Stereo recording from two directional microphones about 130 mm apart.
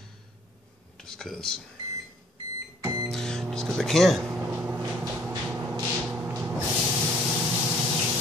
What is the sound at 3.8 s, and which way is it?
Speech, centre (ahead or behind).